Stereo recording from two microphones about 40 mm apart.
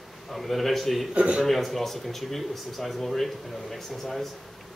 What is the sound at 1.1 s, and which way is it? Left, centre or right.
Speech, right.